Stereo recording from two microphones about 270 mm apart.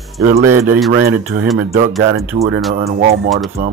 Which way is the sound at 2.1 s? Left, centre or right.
Centre.